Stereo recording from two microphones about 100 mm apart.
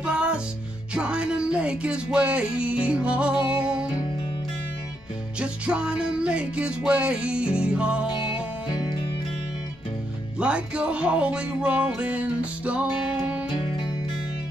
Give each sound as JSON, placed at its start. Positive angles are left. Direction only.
{"t": 0.0, "sound": "music", "side_deg": -10}
{"t": 5.4, "sound": "music", "side_deg": -10}
{"t": 8.1, "sound": "music", "side_deg": 60}
{"t": 10.4, "sound": "music", "side_deg": -10}